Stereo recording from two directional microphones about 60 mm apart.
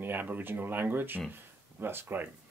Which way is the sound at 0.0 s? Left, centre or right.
Right.